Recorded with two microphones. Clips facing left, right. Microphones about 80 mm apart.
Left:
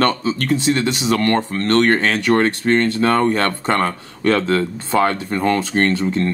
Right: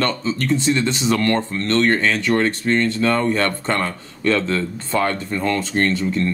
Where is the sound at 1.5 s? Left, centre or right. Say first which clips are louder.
Left 3 dB; left.